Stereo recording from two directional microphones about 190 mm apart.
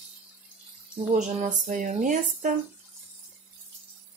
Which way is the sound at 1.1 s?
40° right (ahead or behind).